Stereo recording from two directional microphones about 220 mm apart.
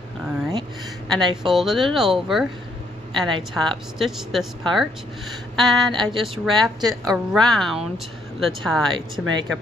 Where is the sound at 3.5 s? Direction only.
Centre (ahead or behind).